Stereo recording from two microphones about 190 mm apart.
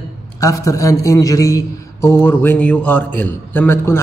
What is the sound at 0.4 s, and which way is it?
A man's voice, 15° left (ahead or behind).